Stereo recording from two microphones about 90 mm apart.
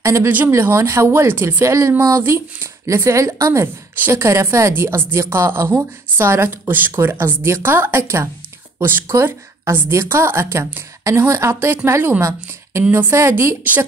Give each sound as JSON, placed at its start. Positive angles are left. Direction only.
{"t": 0.0, "sound": "speech", "side_deg": -35}